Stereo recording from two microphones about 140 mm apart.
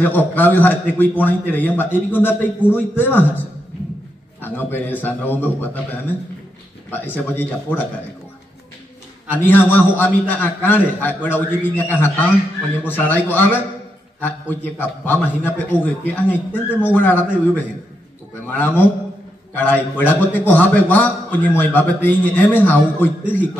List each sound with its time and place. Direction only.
0.0 s a man's voice: 10° left (ahead or behind)
9.3 s a man's voice: 10° left (ahead or behind)
19.5 s a man's voice: 15° left (ahead or behind)